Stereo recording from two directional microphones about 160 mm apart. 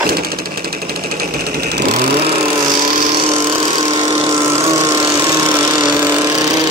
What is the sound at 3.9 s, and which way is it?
Vehicle, 30° right (ahead or behind).